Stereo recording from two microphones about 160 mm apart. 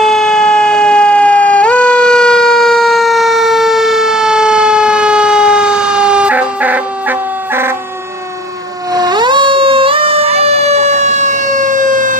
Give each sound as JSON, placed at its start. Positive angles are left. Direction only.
{"t": 0.0, "sound": "emergency vehicle", "side_deg": 5}
{"t": 8.9, "sound": "emergency vehicle", "side_deg": -25}